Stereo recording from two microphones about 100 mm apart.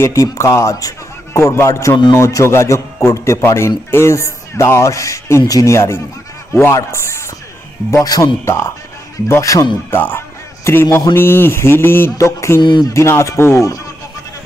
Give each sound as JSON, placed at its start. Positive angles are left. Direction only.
{"t": 0.0, "sound": "a man's voice", "side_deg": 30}
{"t": 9.3, "sound": "a man's voice", "side_deg": 35}
{"t": 9.8, "sound": "a man's voice", "side_deg": 20}
{"t": 12.6, "sound": "speech", "side_deg": 50}
{"t": 12.9, "sound": "speech", "side_deg": 30}